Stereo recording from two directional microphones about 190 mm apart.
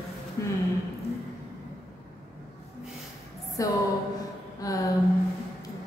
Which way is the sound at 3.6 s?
15° left (ahead or behind).